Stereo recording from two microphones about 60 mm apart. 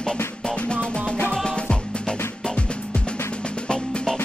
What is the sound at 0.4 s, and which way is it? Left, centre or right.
Music, centre.